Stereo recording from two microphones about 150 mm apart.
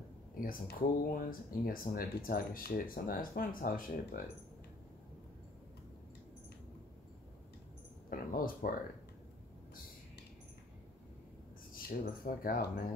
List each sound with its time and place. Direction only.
0.4 s speech: 70° left (ahead or behind)
8.1 s a sound: 70° left (ahead or behind)
11.7 s speech: 65° left (ahead or behind)